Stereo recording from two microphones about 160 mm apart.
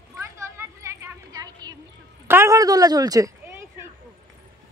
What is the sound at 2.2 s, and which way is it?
Speech, 15° right (ahead or behind).